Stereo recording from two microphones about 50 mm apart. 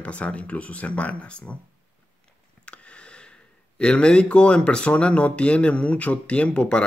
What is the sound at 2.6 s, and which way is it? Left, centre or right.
Speech, left.